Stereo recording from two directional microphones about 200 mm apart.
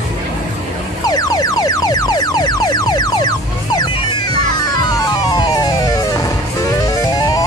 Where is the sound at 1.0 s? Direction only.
20° left (ahead or behind).